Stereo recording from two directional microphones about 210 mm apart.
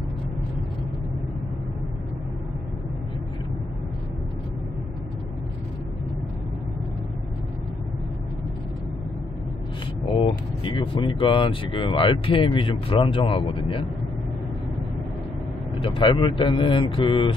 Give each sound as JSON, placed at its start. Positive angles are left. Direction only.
{"t": 10.1, "sound": "speech", "side_deg": 25}
{"t": 15.8, "sound": "speech", "side_deg": 25}